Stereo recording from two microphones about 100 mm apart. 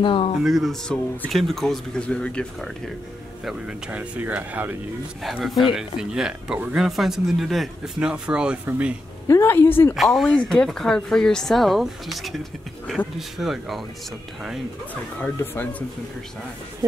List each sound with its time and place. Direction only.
0.0 s speech: 60° left (ahead or behind)
0.4 s speech: 5° right (ahead or behind)
3.4 s speech: 5° right (ahead or behind)
5.2 s speech: centre (ahead or behind)
9.3 s a woman's voice: 25° left (ahead or behind)
9.9 s speech: centre (ahead or behind)
15.3 s a woman's voice: 20° left (ahead or behind)